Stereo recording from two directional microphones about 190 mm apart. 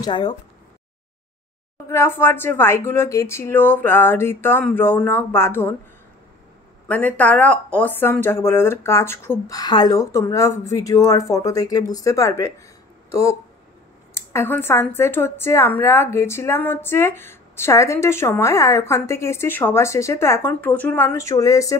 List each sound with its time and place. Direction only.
0.0 s speech: 25° left (ahead or behind)
1.9 s speech: 15° left (ahead or behind)
6.9 s speech: 10° left (ahead or behind)